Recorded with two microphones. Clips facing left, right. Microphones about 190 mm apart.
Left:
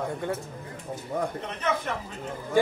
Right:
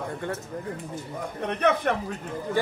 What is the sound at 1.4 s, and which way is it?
Speech, 60° right (ahead or behind).